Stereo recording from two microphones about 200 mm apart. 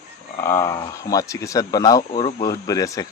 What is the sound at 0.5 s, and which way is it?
Speech, 15° left (ahead or behind).